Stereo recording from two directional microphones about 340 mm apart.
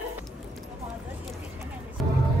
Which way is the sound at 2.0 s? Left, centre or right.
Centre.